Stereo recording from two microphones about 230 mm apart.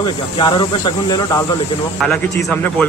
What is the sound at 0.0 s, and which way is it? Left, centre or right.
Speech, centre.